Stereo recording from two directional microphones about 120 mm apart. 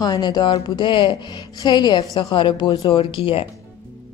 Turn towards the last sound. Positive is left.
turn(degrees=50)  # may be behind; listen again after turning